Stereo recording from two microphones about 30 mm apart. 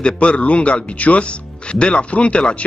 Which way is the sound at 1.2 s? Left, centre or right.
Left.